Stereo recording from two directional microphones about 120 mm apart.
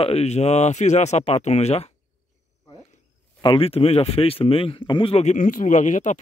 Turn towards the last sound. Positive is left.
turn(degrees=90)